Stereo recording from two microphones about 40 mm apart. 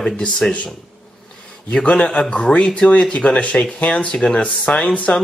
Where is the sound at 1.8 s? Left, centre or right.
Left.